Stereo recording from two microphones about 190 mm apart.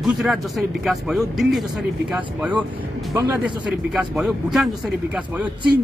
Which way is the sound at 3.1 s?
25° right (ahead or behind).